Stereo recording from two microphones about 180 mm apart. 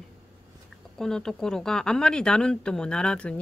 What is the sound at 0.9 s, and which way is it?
Speech, 5° left (ahead or behind).